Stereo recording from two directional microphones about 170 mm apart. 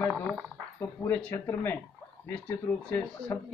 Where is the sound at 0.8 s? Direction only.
15° left (ahead or behind).